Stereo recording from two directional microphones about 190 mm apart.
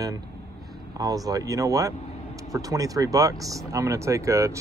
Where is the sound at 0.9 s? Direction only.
20° right (ahead or behind).